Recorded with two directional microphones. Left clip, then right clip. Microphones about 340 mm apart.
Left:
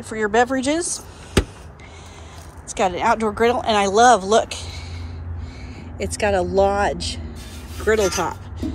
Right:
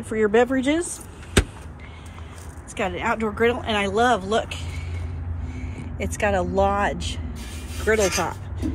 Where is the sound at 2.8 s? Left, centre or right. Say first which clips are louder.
Left 6 dB; centre.